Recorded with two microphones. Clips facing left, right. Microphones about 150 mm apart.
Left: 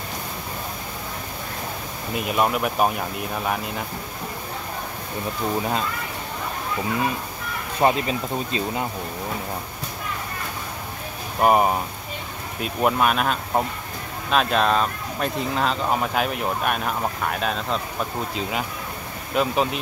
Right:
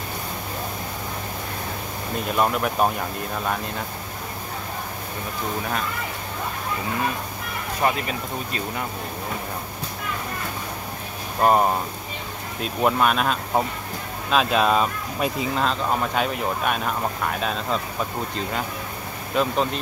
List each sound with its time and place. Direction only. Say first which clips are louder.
2.1 s speech: even; 5° left (ahead or behind)
7.8 s speech: left 4 dB; 25° left (ahead or behind)
11.4 s speech: left 1 dB; 10° left (ahead or behind)
19.3 s speech: left 1 dB; 5° left (ahead or behind)